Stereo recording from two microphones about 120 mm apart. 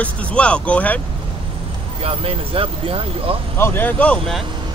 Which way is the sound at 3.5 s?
20° left (ahead or behind).